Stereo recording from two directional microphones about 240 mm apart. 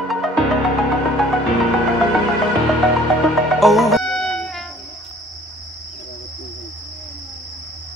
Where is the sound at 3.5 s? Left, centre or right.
Centre.